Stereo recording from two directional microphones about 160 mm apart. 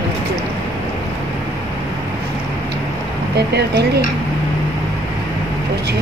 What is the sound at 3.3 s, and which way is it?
Speech, 90° right.